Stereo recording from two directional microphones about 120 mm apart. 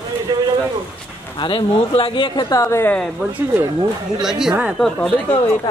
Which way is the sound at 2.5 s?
25° left (ahead or behind).